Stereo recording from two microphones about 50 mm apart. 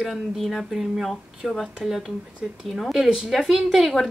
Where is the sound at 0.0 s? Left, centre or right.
Centre.